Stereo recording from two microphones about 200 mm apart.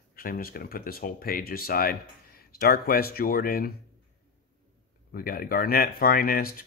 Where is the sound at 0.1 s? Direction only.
45° left (ahead or behind).